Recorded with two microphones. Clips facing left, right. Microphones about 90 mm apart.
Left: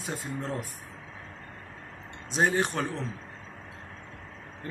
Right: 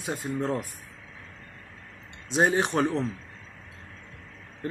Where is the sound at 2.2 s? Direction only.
20° right (ahead or behind).